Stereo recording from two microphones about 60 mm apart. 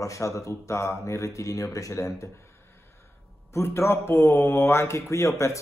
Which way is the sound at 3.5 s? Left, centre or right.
Left.